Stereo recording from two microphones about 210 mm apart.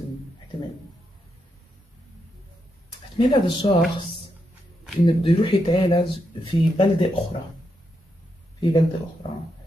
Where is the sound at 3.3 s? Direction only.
20° left (ahead or behind).